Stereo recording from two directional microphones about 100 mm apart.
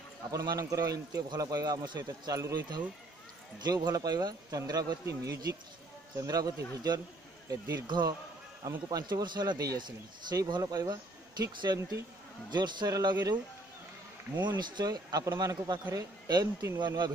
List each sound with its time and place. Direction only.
0.5 s a man's voice: 35° right (ahead or behind)
14.4 s a man's voice: 50° right (ahead or behind)